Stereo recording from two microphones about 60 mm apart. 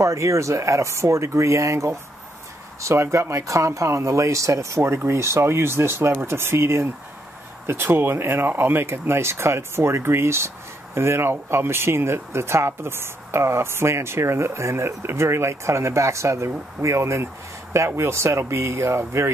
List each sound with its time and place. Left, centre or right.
0.0 s speech: right